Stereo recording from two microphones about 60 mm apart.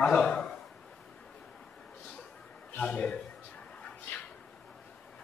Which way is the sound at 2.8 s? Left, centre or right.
Left.